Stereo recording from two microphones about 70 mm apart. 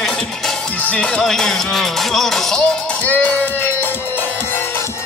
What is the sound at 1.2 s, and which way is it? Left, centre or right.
Speech, centre.